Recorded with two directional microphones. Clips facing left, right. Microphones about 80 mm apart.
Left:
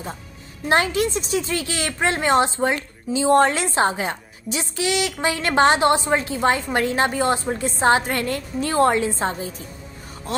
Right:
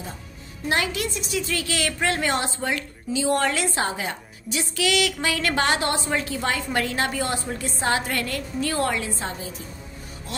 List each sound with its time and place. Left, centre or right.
0.7 s a woman's voice: left